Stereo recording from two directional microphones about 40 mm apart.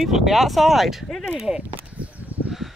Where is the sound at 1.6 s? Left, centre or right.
Right.